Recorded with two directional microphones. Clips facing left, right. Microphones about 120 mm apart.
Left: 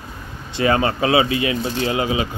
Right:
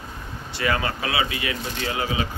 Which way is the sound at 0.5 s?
25° left (ahead or behind).